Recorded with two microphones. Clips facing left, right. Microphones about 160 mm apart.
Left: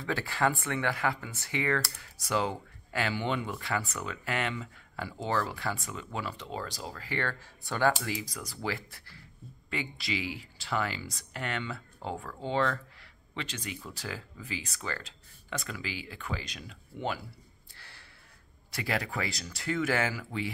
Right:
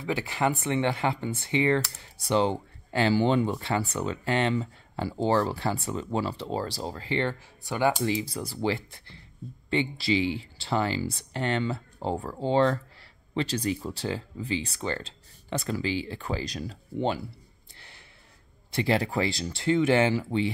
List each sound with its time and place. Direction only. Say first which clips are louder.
0.0 s speech: right 2 dB; 20° right (ahead or behind)
17.7 s snort: right 2 dB; 20° right (ahead or behind)
18.7 s speech: right 8 dB; 25° right (ahead or behind)